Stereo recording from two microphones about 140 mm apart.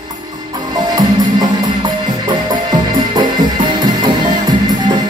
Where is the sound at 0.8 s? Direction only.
30° right (ahead or behind).